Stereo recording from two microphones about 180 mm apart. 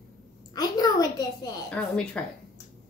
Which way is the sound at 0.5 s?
20° left (ahead or behind).